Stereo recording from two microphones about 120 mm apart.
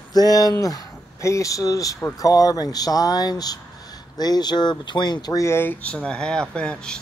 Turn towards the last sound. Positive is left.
turn(degrees=5)  # may be behind; listen again after turning